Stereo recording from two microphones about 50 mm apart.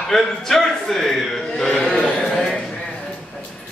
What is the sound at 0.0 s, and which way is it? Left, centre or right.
A man's voice, centre.